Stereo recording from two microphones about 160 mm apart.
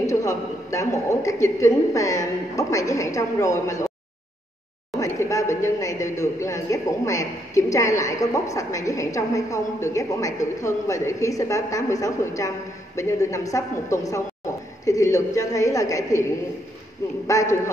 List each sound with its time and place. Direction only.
0.0 s a woman's voice: 20° left (ahead or behind)
4.9 s a woman's voice: 20° left (ahead or behind)
17.3 s a woman's voice: 20° left (ahead or behind)